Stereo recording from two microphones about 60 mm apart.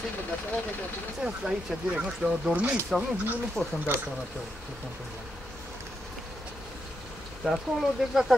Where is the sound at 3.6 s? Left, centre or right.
Centre.